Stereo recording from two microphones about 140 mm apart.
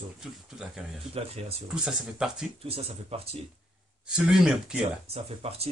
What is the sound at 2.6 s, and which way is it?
Speech, 45° right (ahead or behind).